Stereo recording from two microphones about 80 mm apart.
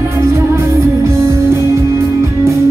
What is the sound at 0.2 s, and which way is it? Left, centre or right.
Music, right.